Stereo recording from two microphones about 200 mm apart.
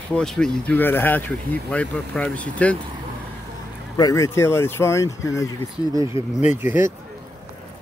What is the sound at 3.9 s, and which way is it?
Speech, 15° left (ahead or behind).